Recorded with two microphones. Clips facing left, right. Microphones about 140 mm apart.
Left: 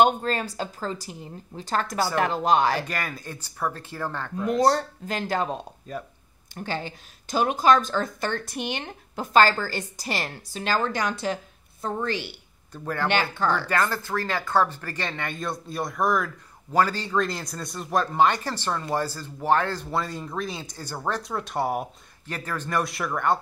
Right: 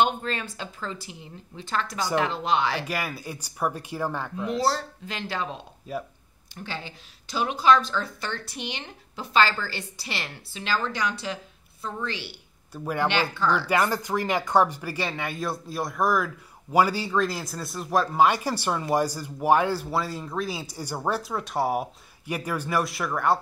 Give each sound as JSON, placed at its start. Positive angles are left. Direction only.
{"t": 0.0, "sound": "a woman's voice", "side_deg": 40}
{"t": 2.9, "sound": "speech", "side_deg": -10}
{"t": 4.6, "sound": "a woman's voice", "side_deg": 45}
{"t": 5.9, "sound": "speech", "side_deg": -10}
{"t": 6.5, "sound": "a woman's voice", "side_deg": 45}
{"t": 12.7, "sound": "speech", "side_deg": -10}
{"t": 13.1, "sound": "a woman's voice", "side_deg": 50}
{"t": 13.6, "sound": "speech", "side_deg": -15}